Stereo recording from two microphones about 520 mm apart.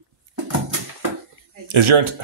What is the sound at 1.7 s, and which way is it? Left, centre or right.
Speech, right.